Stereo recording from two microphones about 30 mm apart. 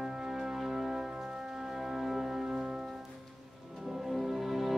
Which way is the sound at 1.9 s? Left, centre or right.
Centre.